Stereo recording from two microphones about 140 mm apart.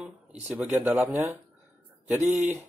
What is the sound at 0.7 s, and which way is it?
Speech, 15° right (ahead or behind).